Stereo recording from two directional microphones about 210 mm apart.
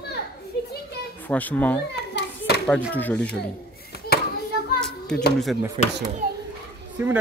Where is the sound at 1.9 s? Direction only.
50° left (ahead or behind).